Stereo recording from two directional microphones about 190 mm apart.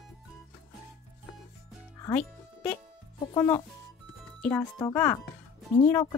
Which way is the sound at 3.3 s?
15° left (ahead or behind).